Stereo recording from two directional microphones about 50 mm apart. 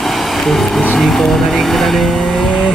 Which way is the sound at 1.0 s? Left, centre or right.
Centre.